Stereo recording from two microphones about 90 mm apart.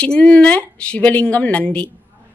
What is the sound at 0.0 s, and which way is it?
Speech, 10° left (ahead or behind).